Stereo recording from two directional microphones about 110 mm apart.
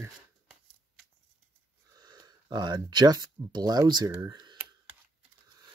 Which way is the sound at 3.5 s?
40° right (ahead or behind).